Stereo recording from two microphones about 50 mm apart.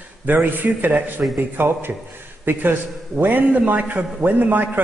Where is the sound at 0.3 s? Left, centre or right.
Right.